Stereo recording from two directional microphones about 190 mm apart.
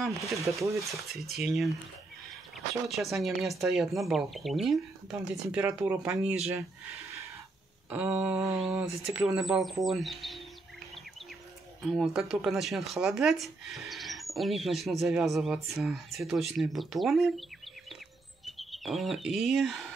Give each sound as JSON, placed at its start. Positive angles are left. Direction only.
{"t": 0.4, "sound": "a sound", "side_deg": -15}
{"t": 0.9, "sound": "speech", "side_deg": 0}
{"t": 2.9, "sound": "speech", "side_deg": 0}
{"t": 7.9, "sound": "a sound", "side_deg": -10}
{"t": 9.0, "sound": "speech", "side_deg": 0}
{"t": 11.8, "sound": "speech", "side_deg": 0}
{"t": 18.4, "sound": "speech", "side_deg": 0}